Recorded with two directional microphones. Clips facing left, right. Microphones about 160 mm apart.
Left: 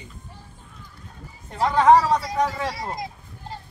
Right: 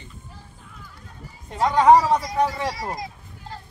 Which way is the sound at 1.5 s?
25° right (ahead or behind).